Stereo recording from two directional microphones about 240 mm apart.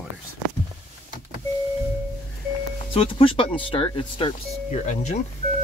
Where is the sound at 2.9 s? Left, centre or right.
Left.